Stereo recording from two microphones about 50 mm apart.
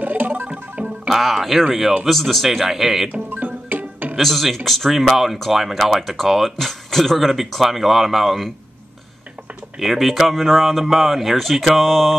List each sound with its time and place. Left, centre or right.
0.0 s telephone: right
1.0 s speech: centre
2.0 s speech: centre
3.1 s music: right
4.2 s speech: centre
9.8 s speech: centre